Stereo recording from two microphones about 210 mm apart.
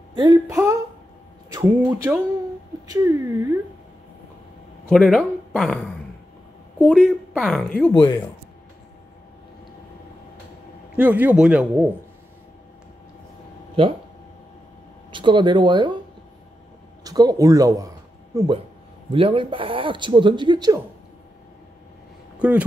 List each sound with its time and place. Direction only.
0.1 s speech: 20° right (ahead or behind)
1.9 s a man's voice: 10° right (ahead or behind)
4.8 s speech: 5° left (ahead or behind)
7.9 s speech: 20° left (ahead or behind)
11.0 s a man's voice: 10° right (ahead or behind)
15.0 s speech: 20° right (ahead or behind)
17.0 s speech: 20° right (ahead or behind)